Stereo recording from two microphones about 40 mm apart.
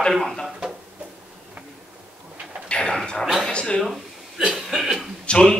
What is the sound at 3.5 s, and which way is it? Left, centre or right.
Speech, left.